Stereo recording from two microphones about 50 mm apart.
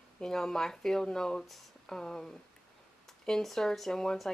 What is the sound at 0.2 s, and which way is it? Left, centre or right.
Speech, centre.